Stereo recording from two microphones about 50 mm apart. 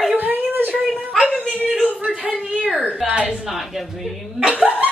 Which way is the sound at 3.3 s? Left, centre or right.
Centre.